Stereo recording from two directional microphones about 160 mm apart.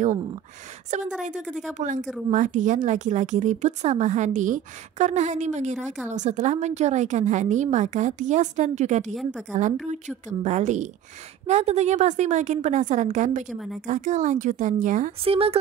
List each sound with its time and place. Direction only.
0.8 s speech: 50° right (ahead or behind)
1.4 s speech: 5° right (ahead or behind)
1.7 s speech: 50° right (ahead or behind)
15.2 s speech: 35° right (ahead or behind)